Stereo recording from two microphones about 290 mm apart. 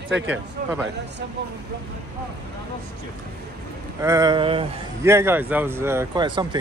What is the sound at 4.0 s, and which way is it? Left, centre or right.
A man's voice, centre.